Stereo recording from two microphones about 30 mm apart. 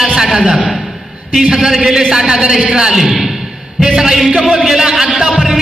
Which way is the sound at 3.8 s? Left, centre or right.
Centre.